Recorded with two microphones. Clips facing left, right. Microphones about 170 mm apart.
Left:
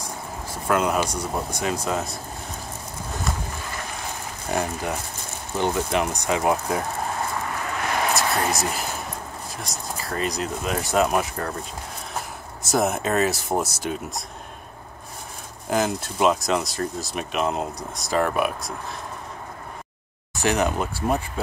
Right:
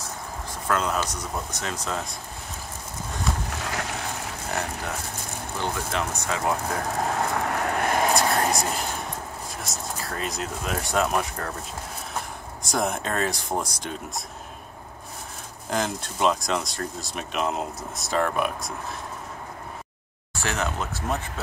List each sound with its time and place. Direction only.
0.0 s a sound: 10° left (ahead or behind)
1.5 s speech: 10° left (ahead or behind)
3.4 s boat: 80° right
4.5 s speech: 15° left (ahead or behind)
7.4 s vehicle: 60° right (ahead or behind)
8.1 s speech: centre (ahead or behind)
12.6 s speech: 5° left (ahead or behind)
15.7 s speech: 5° left (ahead or behind)
20.3 s speech: 15° left (ahead or behind)